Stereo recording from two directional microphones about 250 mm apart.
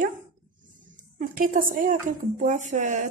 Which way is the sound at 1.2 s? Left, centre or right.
Right.